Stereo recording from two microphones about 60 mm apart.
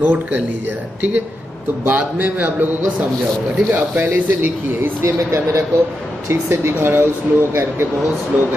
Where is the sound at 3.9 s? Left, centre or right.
Right.